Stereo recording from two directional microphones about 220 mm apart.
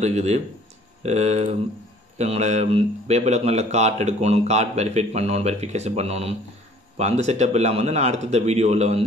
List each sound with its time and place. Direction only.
0.0 s speech: 30° right (ahead or behind)